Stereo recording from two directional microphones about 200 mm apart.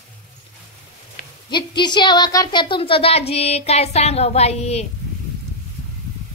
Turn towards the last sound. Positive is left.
turn(degrees=30)  # may be behind; listen again after turning